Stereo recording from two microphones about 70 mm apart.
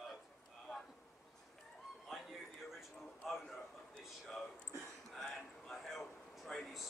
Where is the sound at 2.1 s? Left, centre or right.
Centre.